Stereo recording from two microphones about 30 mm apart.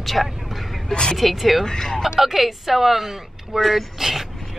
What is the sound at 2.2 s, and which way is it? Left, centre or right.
A woman's voice, centre.